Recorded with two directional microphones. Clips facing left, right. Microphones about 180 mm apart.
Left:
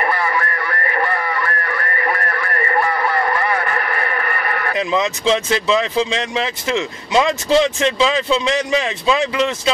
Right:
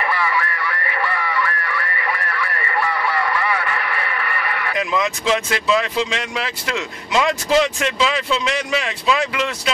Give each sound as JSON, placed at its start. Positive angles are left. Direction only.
{"t": 0.0, "sound": "radio", "side_deg": 45}
{"t": 4.7, "sound": "speech", "side_deg": 25}